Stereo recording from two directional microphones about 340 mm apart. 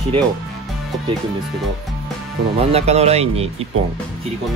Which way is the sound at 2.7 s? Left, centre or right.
Centre.